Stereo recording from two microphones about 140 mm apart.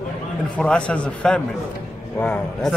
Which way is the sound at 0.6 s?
5° left (ahead or behind).